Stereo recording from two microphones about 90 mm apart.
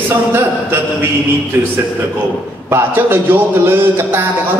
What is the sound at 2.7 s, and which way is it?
Mantra, 25° right (ahead or behind).